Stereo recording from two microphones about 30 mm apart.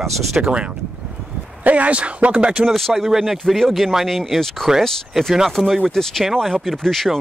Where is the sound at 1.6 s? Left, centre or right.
Right.